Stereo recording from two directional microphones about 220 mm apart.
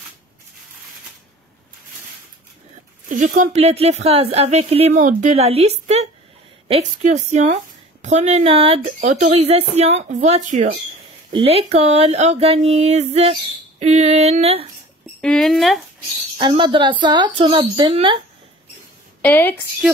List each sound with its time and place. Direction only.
3.1 s speech: 35° right (ahead or behind)
15.2 s speech: centre (ahead or behind)
16.3 s speech: 20° right (ahead or behind)
19.2 s a woman's voice: 10° left (ahead or behind)